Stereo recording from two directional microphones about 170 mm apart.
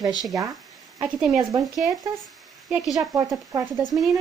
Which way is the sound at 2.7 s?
5° right (ahead or behind).